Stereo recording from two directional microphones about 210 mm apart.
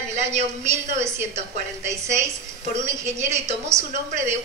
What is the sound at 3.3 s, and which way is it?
Speech, 35° right (ahead or behind).